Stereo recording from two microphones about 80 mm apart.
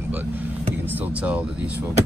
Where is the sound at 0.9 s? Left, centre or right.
Right.